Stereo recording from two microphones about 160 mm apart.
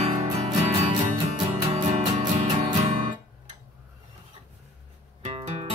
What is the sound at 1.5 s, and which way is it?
Music, 45° right (ahead or behind).